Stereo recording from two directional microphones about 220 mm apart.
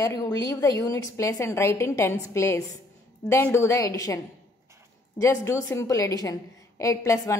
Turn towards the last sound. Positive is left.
turn(degrees=15)  # may be behind; listen again after turning